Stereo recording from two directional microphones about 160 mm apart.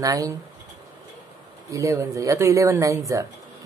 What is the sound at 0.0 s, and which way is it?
Speech, 20° right (ahead or behind).